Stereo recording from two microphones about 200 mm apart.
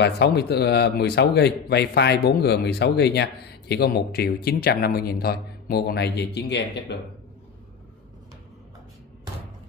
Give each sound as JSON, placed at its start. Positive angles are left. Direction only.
{"t": 0.0, "sound": "speech", "side_deg": 55}